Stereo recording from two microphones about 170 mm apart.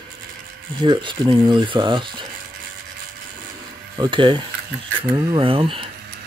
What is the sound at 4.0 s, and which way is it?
Speech, 30° right (ahead or behind).